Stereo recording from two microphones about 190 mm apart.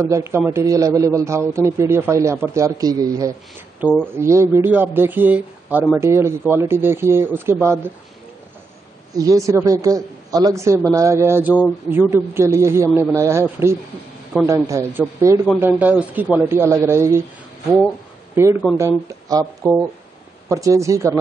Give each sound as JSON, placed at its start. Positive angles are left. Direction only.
{"t": 0.0, "sound": "speech", "side_deg": -15}
{"t": 9.1, "sound": "speech", "side_deg": -20}
{"t": 18.3, "sound": "speech", "side_deg": -15}